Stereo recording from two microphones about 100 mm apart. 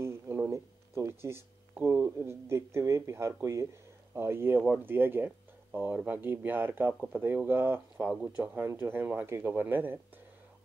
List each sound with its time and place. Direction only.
0.0 s speech: 25° right (ahead or behind)